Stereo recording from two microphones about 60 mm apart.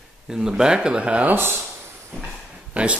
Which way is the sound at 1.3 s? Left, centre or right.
Right.